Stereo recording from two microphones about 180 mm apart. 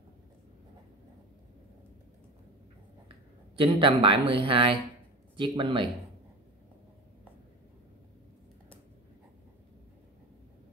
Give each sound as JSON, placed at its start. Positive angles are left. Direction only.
{"t": 3.5, "sound": "speech", "side_deg": -30}